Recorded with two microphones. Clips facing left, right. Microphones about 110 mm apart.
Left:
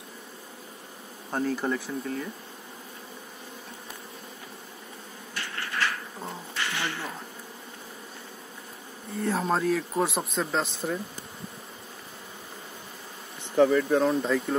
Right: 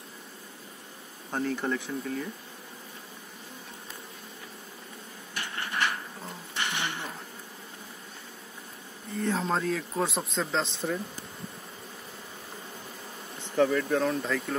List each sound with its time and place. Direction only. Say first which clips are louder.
1.3 s speech: left 2 dB; 5° left (ahead or behind)
5.3 s a sound: even; 15° right (ahead or behind)
6.5 s music: even; 20° right (ahead or behind)
9.1 s speech: left 2 dB; 5° left (ahead or behind)
13.6 s speech: left 4 dB; 15° left (ahead or behind)